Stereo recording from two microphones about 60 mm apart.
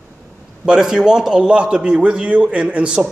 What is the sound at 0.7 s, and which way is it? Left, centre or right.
A man's voice, centre.